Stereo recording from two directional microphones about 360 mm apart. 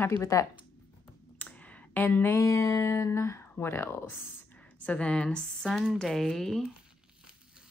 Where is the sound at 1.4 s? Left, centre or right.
Centre.